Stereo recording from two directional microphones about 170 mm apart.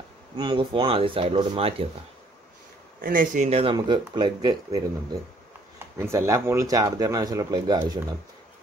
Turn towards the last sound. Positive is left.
turn(degrees=-25)  # may be behind; listen again after turning